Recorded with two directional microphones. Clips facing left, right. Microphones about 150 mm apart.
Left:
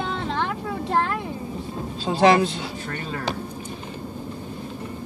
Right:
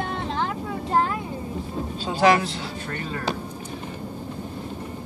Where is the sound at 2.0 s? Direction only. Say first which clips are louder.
Left 2 dB; 25° left (ahead or behind).